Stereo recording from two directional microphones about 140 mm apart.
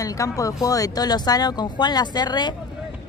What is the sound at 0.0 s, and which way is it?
Speech, 25° left (ahead or behind).